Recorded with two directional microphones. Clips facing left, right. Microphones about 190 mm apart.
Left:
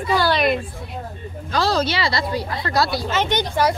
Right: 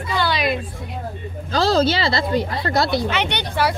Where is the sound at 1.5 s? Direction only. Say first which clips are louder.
Right 3 dB; 30° right (ahead or behind).